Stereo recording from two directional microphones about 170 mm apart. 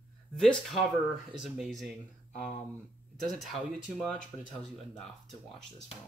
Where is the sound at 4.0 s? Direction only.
5° left (ahead or behind).